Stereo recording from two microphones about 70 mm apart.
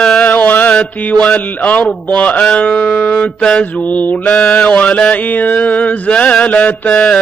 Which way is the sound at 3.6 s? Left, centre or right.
Left.